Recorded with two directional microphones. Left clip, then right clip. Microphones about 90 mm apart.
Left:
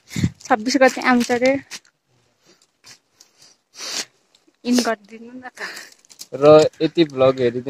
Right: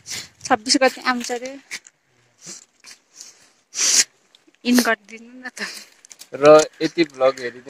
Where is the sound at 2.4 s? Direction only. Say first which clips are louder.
Right 8 dB; 10° left (ahead or behind).